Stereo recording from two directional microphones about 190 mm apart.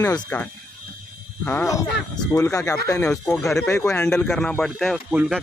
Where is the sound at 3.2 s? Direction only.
Centre (ahead or behind).